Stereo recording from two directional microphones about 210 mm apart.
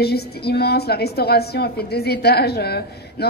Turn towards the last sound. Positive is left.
turn(degrees=50)  # may be behind; listen again after turning